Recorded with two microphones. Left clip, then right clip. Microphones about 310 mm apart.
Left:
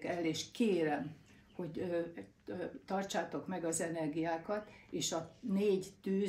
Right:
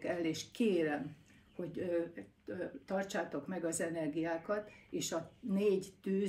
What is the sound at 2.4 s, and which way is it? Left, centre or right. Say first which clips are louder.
Speech: even; centre.